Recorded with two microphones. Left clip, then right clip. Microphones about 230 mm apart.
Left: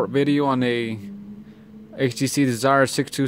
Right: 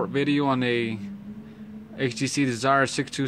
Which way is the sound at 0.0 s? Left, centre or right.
Left.